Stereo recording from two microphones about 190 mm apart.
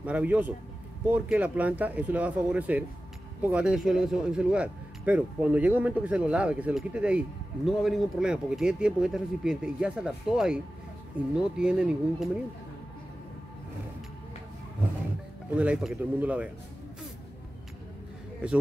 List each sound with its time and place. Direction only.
0.0 s a man's voice: 5° right (ahead or behind)
15.5 s speech: 5° right (ahead or behind)